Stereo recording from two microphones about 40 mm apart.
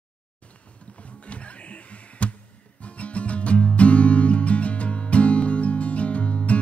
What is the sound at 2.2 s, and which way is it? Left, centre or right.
Music, left.